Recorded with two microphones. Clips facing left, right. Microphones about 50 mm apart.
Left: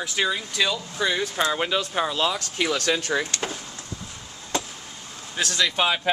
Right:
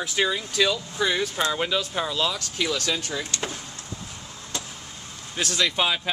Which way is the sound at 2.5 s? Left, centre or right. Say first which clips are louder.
Left 3 dB; left.